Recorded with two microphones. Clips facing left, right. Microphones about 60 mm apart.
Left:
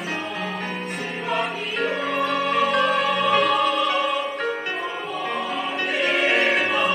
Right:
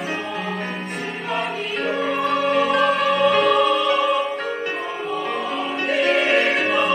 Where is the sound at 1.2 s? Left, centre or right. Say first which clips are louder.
Even; centre.